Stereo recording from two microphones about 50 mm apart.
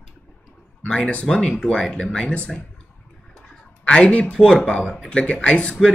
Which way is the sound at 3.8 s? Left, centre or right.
Left.